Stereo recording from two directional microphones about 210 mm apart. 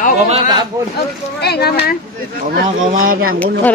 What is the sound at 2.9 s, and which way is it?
Speech, 40° right (ahead or behind).